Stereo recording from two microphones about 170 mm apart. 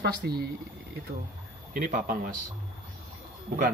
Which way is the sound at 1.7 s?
55° right (ahead or behind).